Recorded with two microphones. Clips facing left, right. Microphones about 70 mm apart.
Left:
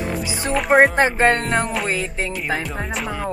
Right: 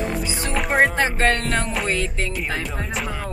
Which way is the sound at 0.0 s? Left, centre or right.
Centre.